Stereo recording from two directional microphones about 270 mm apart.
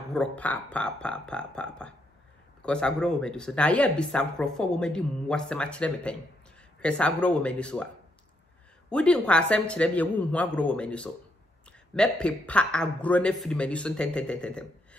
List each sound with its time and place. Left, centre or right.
0.1 s speech: centre
8.9 s speech: centre